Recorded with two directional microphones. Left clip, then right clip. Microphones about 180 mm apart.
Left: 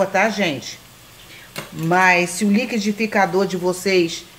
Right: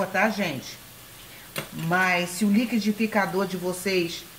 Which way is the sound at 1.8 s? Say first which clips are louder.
Left 8 dB; 50° left (ahead or behind).